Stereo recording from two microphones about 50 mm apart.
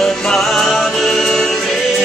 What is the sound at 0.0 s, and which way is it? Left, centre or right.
Music, centre.